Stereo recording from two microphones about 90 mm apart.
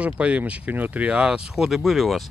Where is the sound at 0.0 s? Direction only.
15° right (ahead or behind).